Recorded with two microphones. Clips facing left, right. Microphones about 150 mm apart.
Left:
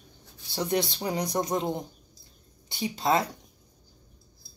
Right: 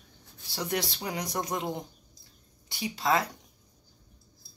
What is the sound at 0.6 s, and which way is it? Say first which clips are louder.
Speech: left 4 dB; 25° left (ahead or behind).